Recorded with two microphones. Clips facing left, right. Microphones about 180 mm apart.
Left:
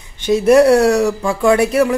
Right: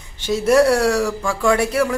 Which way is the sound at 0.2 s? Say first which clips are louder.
Left 5 dB; 20° left (ahead or behind).